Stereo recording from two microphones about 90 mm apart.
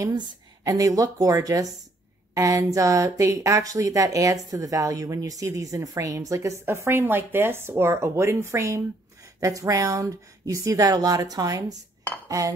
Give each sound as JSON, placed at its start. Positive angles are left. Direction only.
{"t": 0.7, "sound": "speech", "side_deg": -40}